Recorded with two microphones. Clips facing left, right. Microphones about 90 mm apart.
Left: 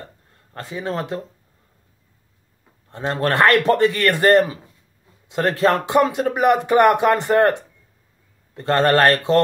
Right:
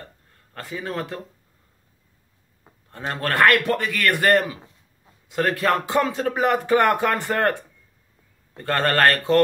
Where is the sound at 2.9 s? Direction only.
25° left (ahead or behind).